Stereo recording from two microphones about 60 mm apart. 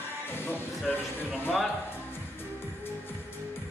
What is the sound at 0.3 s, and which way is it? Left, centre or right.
Music, left.